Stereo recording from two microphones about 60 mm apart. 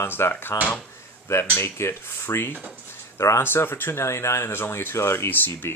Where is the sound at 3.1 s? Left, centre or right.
Left.